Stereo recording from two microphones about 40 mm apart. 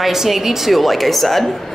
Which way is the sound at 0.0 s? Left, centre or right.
Centre.